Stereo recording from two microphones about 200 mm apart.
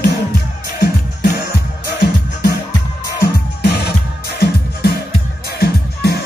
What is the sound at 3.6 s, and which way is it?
Music, 55° left (ahead or behind).